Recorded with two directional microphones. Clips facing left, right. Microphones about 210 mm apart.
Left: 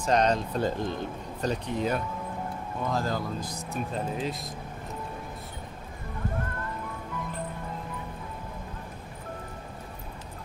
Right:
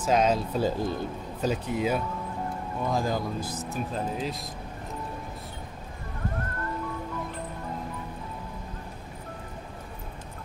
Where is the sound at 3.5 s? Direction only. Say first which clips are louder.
Right 1 dB; centre (ahead or behind).